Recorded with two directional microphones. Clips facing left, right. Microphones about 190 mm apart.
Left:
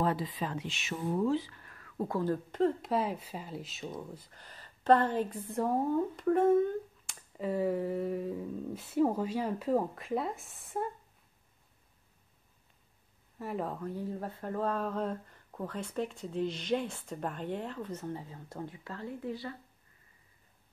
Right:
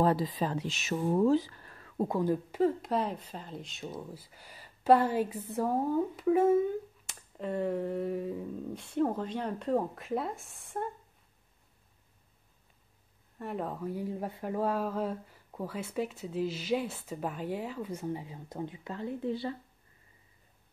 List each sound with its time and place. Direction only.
0.0 s speech: 35° right (ahead or behind); by 10.9 s centre (ahead or behind)
13.4 s speech: centre (ahead or behind); by 19.5 s 25° right (ahead or behind)